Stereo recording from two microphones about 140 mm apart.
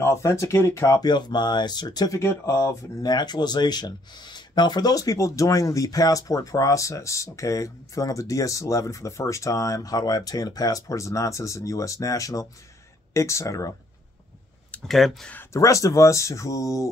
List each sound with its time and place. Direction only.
0.0 s speech: 20° left (ahead or behind)
14.7 s speech: centre (ahead or behind)
15.3 s speech: 20° left (ahead or behind)